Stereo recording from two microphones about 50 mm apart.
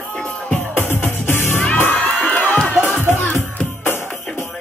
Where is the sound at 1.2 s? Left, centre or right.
Left.